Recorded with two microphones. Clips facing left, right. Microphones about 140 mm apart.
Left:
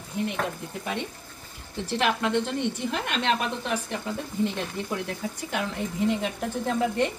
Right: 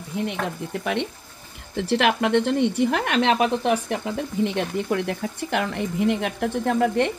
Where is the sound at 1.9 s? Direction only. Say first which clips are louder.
Right 5 dB; 65° right (ahead or behind).